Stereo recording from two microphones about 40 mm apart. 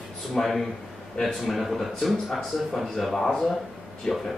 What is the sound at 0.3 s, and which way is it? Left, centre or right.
Speech, centre.